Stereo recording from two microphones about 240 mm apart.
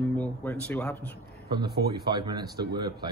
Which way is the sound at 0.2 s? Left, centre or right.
Centre.